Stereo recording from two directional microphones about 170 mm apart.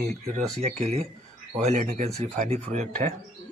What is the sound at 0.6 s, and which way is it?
Speech, 40° right (ahead or behind).